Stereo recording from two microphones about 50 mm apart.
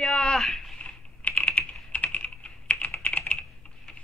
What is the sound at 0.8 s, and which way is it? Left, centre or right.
Typing, left.